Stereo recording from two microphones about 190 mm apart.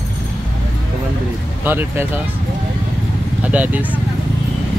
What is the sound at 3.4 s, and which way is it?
Speech, 10° right (ahead or behind).